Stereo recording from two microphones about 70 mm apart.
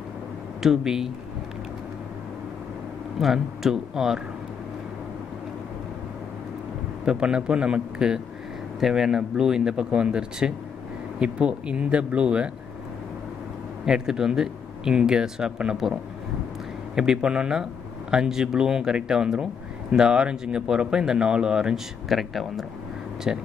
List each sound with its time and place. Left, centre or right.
0.6 s speech: centre
3.2 s speech: centre
7.1 s speech: centre
13.8 s speech: centre
16.9 s speech: centre
23.3 s speech: centre